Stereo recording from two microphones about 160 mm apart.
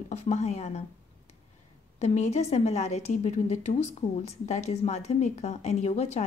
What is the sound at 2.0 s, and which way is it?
A woman's voice, 45° left (ahead or behind).